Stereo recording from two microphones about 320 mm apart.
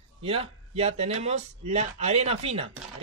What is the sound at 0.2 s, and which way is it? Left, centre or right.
Speech, centre.